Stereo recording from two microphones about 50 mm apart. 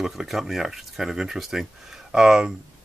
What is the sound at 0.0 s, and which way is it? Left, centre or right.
Speech, centre.